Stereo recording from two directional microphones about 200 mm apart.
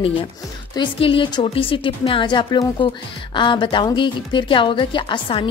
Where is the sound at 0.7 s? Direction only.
25° left (ahead or behind).